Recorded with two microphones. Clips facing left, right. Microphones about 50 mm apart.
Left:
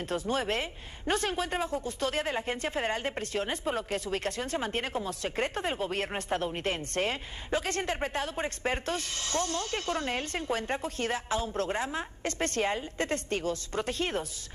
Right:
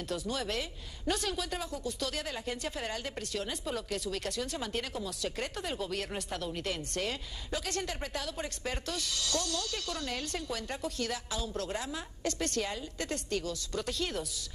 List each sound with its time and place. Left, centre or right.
0.1 s a man's voice: left